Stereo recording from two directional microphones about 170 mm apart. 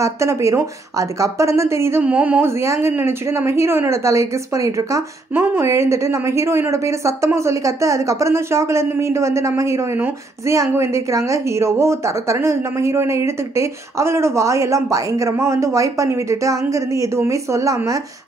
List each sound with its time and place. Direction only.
0.0 s speech: 15° right (ahead or behind)